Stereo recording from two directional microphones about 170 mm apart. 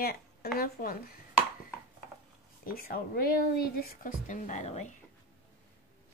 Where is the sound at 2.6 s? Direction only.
60° left (ahead or behind); by 4.9 s 40° left (ahead or behind).